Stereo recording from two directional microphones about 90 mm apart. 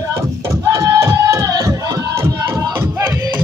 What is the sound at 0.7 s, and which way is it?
Music, 35° right (ahead or behind).